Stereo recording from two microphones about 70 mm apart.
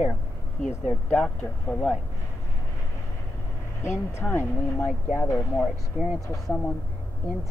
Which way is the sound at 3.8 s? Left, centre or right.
Left.